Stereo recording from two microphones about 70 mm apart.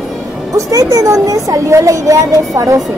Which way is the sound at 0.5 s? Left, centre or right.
Right.